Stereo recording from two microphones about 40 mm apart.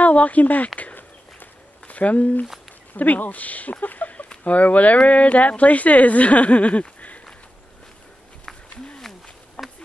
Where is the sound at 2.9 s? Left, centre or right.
Left.